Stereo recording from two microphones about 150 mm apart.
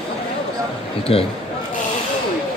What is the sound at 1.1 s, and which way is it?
Speech, 40° left (ahead or behind).